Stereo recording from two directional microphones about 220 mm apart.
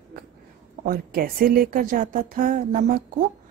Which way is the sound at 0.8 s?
40° right (ahead or behind).